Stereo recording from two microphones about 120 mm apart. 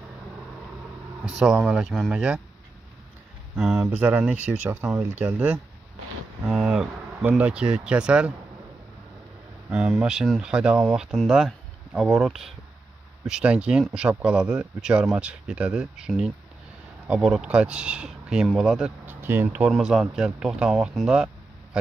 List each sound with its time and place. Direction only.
1.2 s speech: 5° right (ahead or behind)
3.5 s speech: 5° right (ahead or behind)
9.7 s speech: 10° right (ahead or behind)
19.7 s speech: 5° right (ahead or behind)